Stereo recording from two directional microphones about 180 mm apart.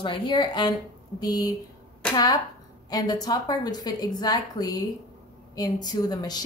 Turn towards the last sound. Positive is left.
turn(degrees=20)  # may be behind; listen again after turning